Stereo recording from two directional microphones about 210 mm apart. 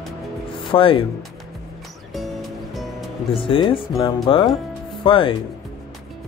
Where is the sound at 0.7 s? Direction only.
25° left (ahead or behind).